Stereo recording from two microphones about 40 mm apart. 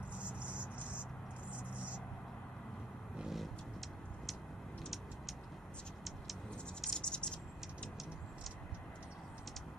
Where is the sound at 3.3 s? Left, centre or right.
Centre.